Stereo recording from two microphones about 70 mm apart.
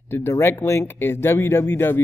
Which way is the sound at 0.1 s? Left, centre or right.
Left.